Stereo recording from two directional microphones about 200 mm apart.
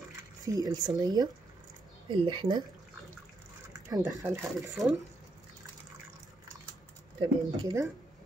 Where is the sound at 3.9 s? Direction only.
15° right (ahead or behind).